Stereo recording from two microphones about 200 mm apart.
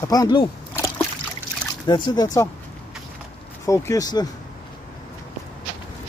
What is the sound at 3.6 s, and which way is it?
Speech, 15° left (ahead or behind).